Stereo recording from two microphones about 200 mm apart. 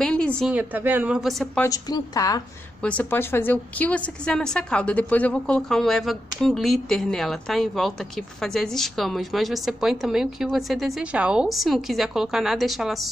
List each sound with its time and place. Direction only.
0.0 s a sound: 5° left (ahead or behind)
0.5 s a woman's voice: 10° right (ahead or behind)
1.7 s a woman's voice: 20° left (ahead or behind)
2.8 s a woman's voice: 5° left (ahead or behind)